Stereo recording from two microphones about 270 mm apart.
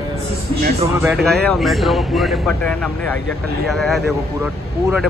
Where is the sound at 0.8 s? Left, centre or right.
Centre.